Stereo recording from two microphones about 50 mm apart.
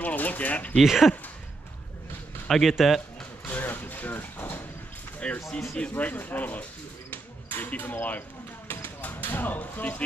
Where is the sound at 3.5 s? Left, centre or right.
Left.